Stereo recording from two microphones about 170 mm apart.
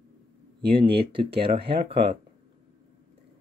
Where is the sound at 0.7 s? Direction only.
30° right (ahead or behind).